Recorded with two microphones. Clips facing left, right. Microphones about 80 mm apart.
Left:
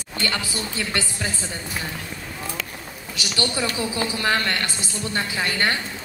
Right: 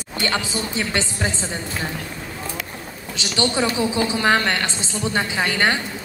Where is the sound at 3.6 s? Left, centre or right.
Right.